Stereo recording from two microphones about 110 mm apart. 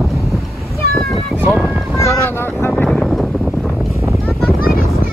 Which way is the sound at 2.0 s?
25° left (ahead or behind).